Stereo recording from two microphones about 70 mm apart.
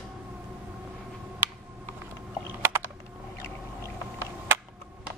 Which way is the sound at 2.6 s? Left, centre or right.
Right.